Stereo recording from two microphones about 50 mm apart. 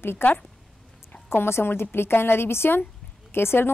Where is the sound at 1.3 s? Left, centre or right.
Left.